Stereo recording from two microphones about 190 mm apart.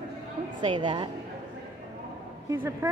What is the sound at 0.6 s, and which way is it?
Speech, 25° right (ahead or behind).